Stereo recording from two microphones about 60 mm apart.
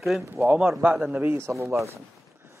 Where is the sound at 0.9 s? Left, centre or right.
Centre.